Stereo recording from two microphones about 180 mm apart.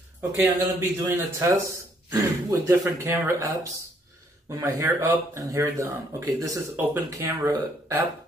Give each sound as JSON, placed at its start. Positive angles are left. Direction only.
{"t": 0.4, "sound": "speech", "side_deg": -15}